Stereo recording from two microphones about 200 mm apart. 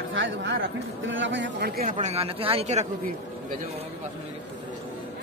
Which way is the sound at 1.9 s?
30° right (ahead or behind).